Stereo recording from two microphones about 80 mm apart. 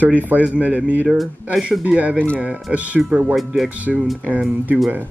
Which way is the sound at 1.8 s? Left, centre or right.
Centre.